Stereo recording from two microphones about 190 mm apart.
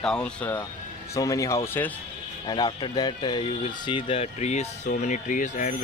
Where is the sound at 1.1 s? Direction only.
15° left (ahead or behind).